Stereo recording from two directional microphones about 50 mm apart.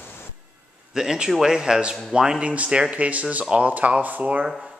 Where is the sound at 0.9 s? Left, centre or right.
Centre.